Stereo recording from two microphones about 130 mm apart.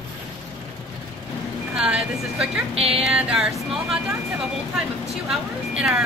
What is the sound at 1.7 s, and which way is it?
Vehicle, 5° right (ahead or behind).